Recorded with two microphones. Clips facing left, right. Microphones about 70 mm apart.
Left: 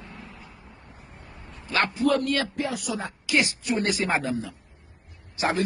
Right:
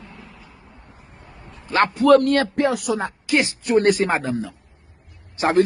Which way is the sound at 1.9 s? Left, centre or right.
Right.